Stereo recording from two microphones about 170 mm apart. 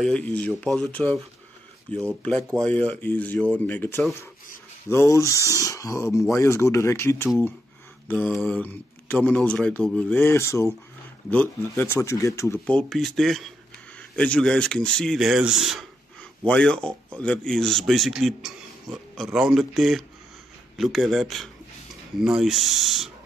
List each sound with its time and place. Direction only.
0.0 s speech: 5° left (ahead or behind)
12.6 s a man's voice: 5° left (ahead or behind)